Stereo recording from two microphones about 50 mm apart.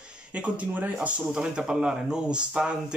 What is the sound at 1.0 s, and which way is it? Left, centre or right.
Speech, right.